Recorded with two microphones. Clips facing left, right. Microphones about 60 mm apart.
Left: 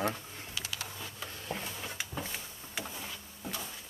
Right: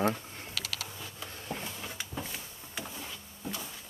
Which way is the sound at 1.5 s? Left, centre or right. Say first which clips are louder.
Even; centre.